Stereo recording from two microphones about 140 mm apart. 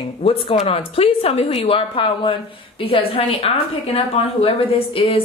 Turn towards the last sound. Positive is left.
turn(degrees=40)  # may be behind; listen again after turning